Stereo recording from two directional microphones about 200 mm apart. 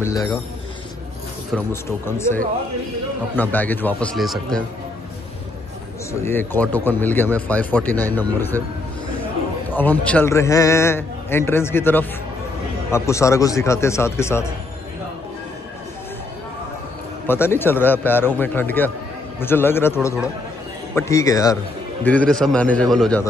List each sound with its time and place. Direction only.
0.0 s a man's voice: 15° left (ahead or behind)
1.5 s a man's voice: 10° left (ahead or behind)
6.2 s a man's voice: 10° left (ahead or behind)
9.7 s a man's voice: 10° left (ahead or behind)
17.3 s a man's voice: 10° left (ahead or behind)
22.0 s a man's voice: 5° left (ahead or behind)